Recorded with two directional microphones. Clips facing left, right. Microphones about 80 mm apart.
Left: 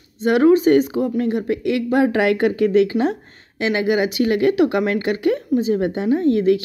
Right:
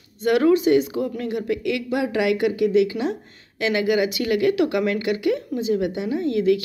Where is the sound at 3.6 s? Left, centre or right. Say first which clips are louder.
Left 2 dB; left.